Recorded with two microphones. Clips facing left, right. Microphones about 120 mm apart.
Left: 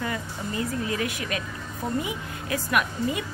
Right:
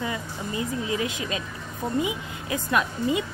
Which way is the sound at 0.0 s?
15° right (ahead or behind).